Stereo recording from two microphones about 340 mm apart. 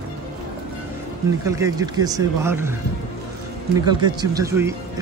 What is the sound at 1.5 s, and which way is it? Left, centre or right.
Speech, centre.